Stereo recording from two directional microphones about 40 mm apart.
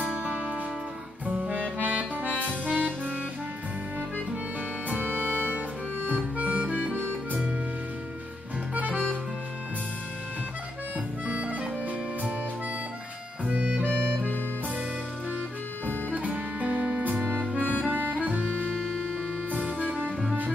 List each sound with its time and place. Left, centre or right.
0.0 s music: right
1.8 s accordion: right
4.8 s music: right
6.0 s harmonica: right
11.2 s harmonica: right
13.5 s music: right
16.1 s music: right